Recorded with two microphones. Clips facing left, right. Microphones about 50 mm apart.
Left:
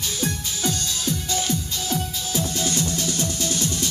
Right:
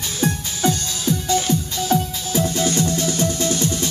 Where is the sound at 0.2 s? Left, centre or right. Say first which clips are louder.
Right 7 dB; right.